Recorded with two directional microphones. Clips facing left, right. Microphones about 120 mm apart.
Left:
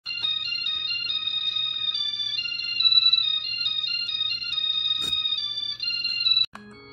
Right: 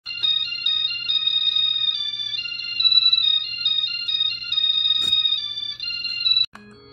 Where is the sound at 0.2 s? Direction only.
35° left (ahead or behind).